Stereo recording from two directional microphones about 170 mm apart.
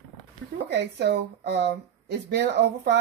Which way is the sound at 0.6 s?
85° right.